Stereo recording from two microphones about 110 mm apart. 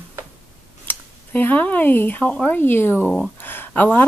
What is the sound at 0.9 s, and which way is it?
Speech, 15° left (ahead or behind).